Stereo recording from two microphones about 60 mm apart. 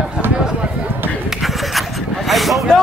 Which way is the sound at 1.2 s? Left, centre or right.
Centre.